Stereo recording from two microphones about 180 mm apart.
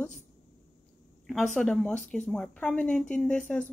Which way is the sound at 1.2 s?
Centre (ahead or behind).